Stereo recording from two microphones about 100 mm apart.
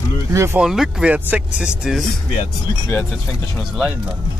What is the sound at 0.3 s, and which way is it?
Speech, 30° right (ahead or behind).